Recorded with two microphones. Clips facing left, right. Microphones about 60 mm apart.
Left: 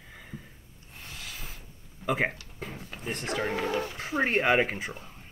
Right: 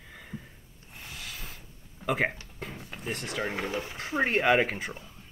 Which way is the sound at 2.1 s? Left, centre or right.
Centre.